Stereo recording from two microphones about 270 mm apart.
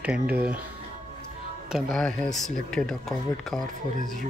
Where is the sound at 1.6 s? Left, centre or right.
Centre.